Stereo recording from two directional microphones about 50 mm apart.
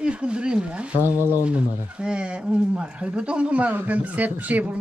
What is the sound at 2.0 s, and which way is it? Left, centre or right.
Speech, centre.